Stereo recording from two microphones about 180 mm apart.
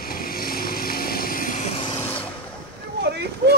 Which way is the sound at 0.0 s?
55° left (ahead or behind).